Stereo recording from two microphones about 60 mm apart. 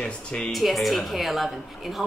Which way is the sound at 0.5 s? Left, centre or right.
Centre.